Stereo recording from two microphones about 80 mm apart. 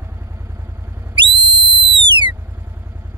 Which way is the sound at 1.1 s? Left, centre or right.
Right.